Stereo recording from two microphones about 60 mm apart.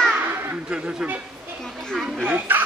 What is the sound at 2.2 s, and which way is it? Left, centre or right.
Speech, right.